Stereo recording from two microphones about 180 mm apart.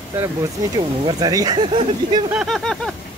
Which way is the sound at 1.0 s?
20° right (ahead or behind).